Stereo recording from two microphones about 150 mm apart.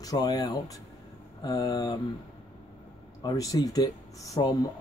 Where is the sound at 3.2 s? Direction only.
25° left (ahead or behind).